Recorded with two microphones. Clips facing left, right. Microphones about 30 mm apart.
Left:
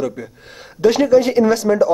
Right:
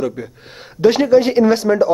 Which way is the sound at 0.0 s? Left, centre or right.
Centre.